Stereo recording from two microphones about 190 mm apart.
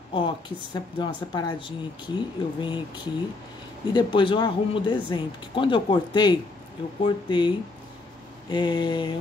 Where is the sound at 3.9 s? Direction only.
25° left (ahead or behind).